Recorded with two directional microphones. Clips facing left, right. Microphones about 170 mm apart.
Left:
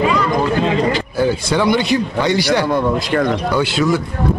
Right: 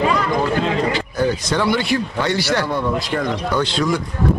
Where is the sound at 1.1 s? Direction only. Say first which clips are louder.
Left 2 dB; 10° left (ahead or behind).